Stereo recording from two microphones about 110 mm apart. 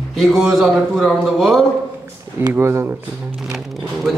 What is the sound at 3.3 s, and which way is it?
Speech, 5° right (ahead or behind).